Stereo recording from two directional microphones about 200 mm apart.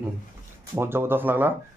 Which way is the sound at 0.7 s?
10° right (ahead or behind).